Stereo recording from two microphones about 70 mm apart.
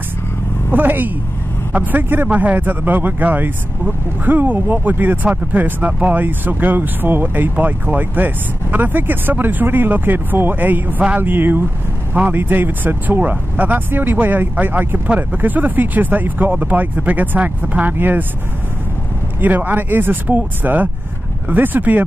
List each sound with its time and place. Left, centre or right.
0.7 s speech: right
19.4 s speech: right